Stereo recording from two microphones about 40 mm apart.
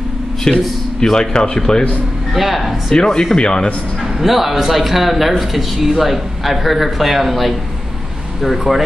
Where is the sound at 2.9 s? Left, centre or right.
Centre.